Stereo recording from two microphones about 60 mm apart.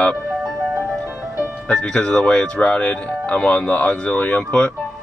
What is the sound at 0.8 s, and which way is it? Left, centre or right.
Music, right.